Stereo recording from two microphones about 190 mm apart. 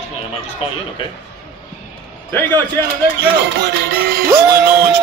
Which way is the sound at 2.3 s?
10° left (ahead or behind).